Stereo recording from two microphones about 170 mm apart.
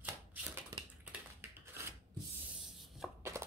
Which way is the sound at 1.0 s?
10° right (ahead or behind).